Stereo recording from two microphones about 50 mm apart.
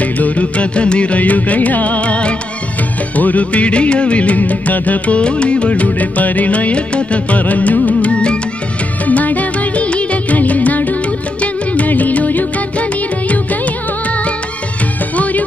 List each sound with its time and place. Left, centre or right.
0.0 s music: left
9.0 s music: left
15.1 s music: left